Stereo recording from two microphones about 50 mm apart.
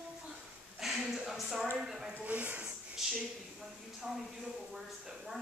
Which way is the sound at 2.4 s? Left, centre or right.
Right.